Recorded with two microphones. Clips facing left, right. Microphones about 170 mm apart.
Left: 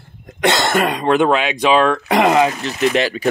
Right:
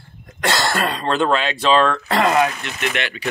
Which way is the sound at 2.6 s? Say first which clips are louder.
Left 8 dB; 35° left (ahead or behind).